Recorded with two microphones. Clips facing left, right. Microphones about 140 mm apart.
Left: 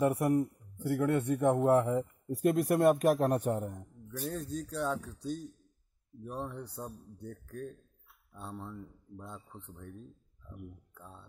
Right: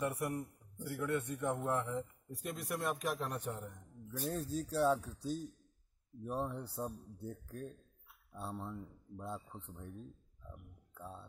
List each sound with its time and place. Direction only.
0.1 s speech: 65° left (ahead or behind)
4.2 s speech: 5° right (ahead or behind)